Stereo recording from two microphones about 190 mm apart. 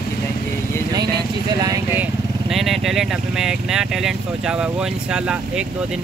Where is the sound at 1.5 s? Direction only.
20° right (ahead or behind).